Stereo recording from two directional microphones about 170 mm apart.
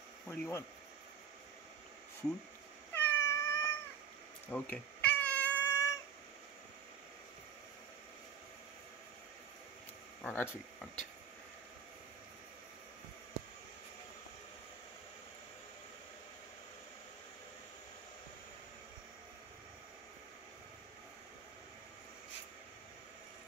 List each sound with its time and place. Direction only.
0.3 s speech: 15° left (ahead or behind)
3.0 s cat: 15° left (ahead or behind)
10.2 s speech: 10° left (ahead or behind)